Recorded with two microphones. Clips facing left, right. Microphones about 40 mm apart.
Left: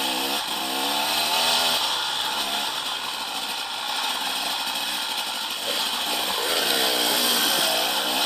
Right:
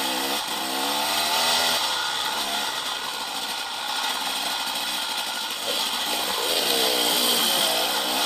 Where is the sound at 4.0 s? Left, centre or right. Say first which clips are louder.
Even; left.